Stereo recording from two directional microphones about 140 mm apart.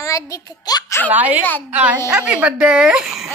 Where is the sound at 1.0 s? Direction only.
10° right (ahead or behind).